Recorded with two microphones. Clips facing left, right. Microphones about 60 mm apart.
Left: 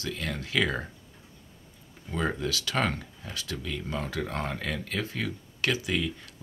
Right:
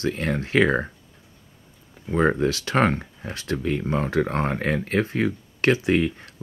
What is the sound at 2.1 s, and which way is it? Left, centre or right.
Speech, right.